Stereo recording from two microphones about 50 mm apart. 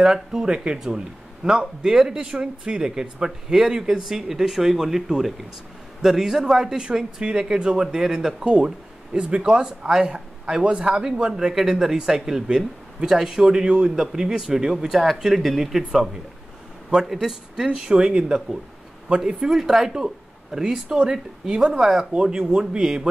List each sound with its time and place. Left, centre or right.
0.0 s a man's voice: centre